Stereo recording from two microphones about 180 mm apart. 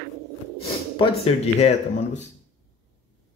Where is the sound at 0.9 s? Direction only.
30° left (ahead or behind).